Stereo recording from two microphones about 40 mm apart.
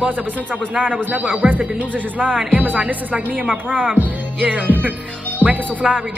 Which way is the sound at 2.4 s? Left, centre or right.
Right.